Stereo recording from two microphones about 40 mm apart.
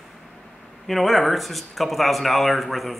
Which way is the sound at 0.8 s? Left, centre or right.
Centre.